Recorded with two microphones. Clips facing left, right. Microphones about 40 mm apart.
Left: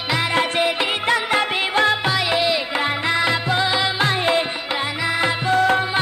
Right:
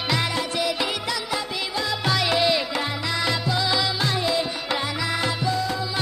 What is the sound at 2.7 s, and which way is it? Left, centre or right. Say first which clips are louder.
Music: left 6 dB; left.